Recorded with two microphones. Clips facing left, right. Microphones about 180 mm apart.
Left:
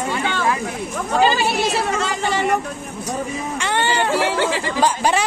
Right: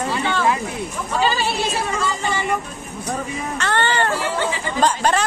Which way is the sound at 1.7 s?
75° left (ahead or behind).